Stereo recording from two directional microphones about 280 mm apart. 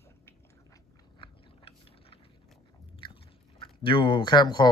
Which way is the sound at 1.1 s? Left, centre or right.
Centre.